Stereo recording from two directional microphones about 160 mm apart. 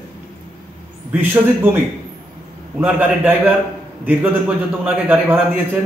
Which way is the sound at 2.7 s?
10° right (ahead or behind).